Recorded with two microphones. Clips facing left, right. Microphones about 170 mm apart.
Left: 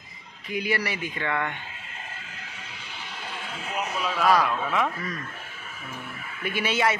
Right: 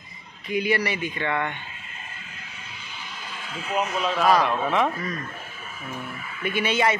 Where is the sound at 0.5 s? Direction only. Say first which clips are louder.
Right 4 dB; centre (ahead or behind).